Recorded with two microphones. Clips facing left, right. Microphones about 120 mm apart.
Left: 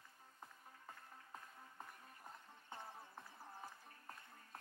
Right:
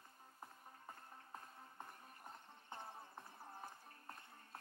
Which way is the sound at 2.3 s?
25° right (ahead or behind).